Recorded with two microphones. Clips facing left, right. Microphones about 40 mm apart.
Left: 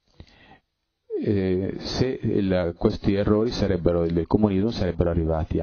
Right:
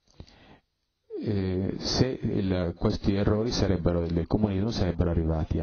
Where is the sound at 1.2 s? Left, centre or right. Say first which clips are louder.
Left 6 dB; left.